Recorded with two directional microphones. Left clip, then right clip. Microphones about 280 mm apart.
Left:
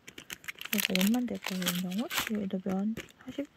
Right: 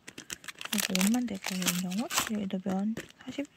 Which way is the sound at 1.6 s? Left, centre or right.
Right.